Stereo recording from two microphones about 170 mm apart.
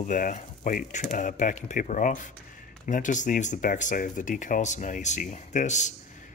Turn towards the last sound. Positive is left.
turn(degrees=45)  # may be behind; listen again after turning